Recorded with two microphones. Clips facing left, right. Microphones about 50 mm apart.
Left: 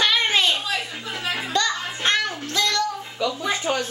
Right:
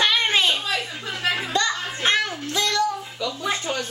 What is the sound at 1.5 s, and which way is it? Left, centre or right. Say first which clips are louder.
Music: even; centre.